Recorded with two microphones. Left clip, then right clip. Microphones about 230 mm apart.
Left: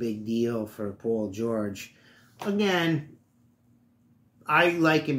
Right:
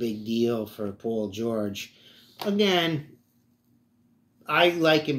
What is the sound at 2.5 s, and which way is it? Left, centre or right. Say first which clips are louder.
Speech: right 2 dB; centre.